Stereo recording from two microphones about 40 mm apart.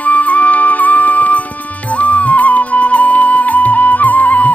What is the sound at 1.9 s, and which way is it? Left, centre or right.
Music, left.